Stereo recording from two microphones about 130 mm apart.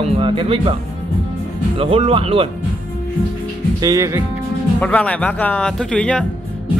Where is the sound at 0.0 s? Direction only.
40° right (ahead or behind).